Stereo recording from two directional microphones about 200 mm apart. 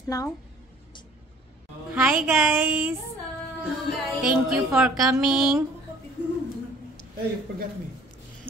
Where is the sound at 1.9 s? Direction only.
5° right (ahead or behind).